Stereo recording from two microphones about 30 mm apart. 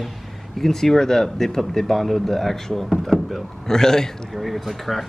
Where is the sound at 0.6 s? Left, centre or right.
Centre.